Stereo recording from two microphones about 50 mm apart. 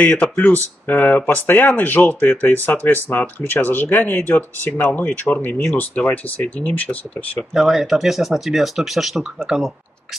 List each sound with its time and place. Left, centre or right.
0.0 s speech: left
0.4 s speech: left
7.5 s speech: centre
9.2 s speech: centre